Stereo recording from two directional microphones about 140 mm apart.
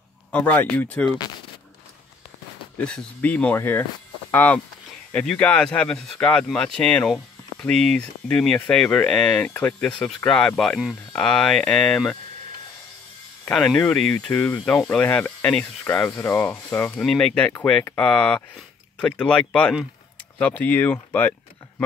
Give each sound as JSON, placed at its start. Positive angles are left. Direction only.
{"t": 0.3, "sound": "speech", "side_deg": 10}
{"t": 1.0, "sound": "speech", "side_deg": 30}
{"t": 2.8, "sound": "speech", "side_deg": 5}
{"t": 13.5, "sound": "speech", "side_deg": 5}